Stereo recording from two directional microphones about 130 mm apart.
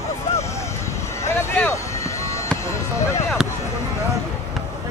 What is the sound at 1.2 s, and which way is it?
Speech, 20° left (ahead or behind).